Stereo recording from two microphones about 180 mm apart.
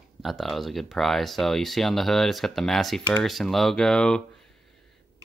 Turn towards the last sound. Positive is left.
turn(degrees=5)  # may be behind; listen again after turning